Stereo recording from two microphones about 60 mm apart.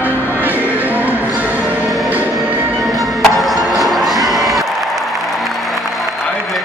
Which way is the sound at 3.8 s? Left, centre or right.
Centre.